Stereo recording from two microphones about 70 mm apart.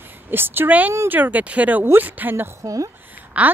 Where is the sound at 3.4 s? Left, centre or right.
Centre.